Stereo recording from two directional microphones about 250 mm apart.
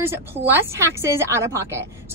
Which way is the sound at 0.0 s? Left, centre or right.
Centre.